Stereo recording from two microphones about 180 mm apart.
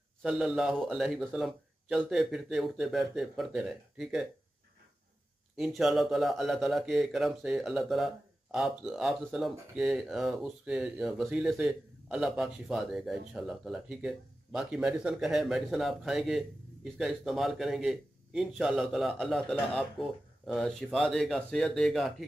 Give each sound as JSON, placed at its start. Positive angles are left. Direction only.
{"t": 0.2, "sound": "speech", "side_deg": 0}
{"t": 5.6, "sound": "speech", "side_deg": 0}